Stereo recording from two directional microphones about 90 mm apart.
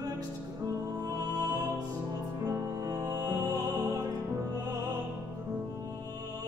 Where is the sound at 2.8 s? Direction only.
40° right (ahead or behind).